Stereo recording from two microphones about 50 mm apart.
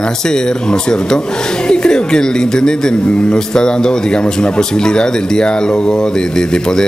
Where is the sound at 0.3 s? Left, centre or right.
Centre.